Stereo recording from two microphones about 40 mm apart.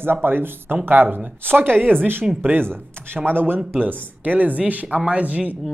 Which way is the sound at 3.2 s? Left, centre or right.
Right.